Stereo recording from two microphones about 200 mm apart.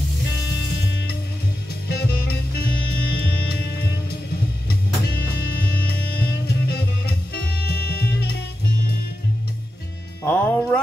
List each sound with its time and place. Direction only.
1.9 s music: 55° left (ahead or behind)
5.3 s music: 50° left (ahead or behind)
10.2 s music: 10° left (ahead or behind)